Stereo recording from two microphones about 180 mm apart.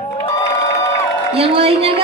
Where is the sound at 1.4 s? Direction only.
35° right (ahead or behind).